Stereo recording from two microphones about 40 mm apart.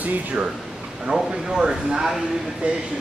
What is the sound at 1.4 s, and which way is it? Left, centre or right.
Speech, centre.